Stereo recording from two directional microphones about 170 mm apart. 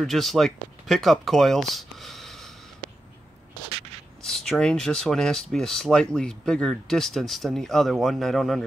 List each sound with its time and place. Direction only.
0.0 s speech: centre (ahead or behind)
1.7 s a sound: centre (ahead or behind)
4.2 s speech: 5° left (ahead or behind)